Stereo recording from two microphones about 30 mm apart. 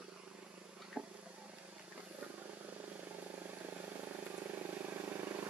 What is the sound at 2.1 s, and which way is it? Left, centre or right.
Vehicle, right.